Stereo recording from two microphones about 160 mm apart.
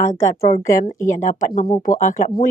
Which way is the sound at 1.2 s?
55° left (ahead or behind).